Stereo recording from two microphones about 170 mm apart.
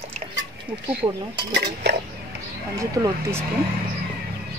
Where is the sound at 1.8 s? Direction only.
90° right.